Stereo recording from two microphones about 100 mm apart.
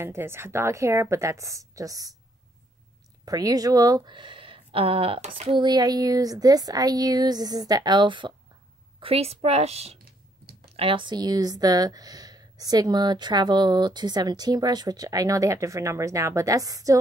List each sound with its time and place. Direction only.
0.0 s speech: 25° right (ahead or behind)
3.3 s speech: 40° right (ahead or behind)
4.1 s speech: 55° right (ahead or behind)
5.6 s speech: 45° right (ahead or behind)
9.0 s speech: 85° right
10.7 s speech: 65° right (ahead or behind); by 17.0 s 35° right (ahead or behind)